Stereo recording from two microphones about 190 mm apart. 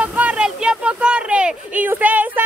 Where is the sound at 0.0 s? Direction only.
5° right (ahead or behind).